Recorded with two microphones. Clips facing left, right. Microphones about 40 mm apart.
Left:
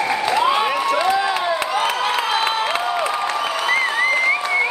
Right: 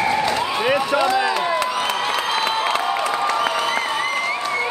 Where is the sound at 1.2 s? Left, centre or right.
Centre.